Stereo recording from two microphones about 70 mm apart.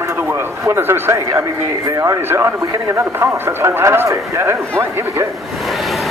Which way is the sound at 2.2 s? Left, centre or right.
Right.